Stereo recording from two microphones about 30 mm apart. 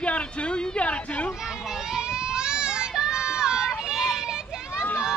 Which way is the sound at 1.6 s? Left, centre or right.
Centre.